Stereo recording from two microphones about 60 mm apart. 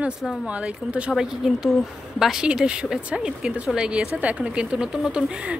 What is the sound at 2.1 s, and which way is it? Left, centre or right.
Speech, centre.